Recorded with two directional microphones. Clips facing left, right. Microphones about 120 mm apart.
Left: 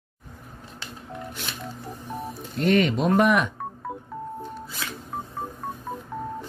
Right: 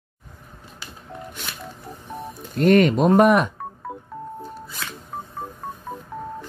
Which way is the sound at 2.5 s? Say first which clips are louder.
Right 5 dB; 50° right (ahead or behind).